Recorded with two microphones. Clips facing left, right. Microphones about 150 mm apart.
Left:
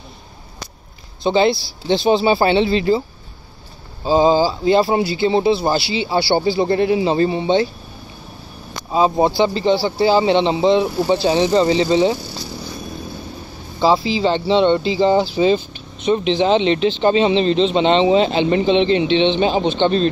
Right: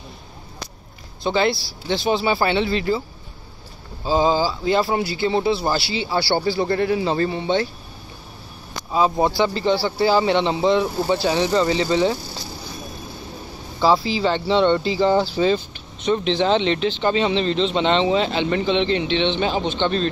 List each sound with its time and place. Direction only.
1.2 s speech: 20° left (ahead or behind)
4.0 s speech: 25° left (ahead or behind)
8.9 s speech: 25° left (ahead or behind)
13.7 s speech: 20° left (ahead or behind)